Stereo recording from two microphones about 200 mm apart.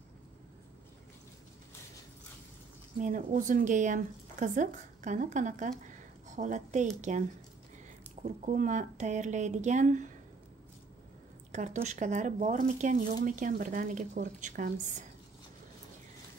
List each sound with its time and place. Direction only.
3.0 s speech: 40° right (ahead or behind)
11.5 s speech: 35° right (ahead or behind)